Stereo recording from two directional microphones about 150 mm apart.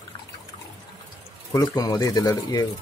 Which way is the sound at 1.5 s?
25° left (ahead or behind).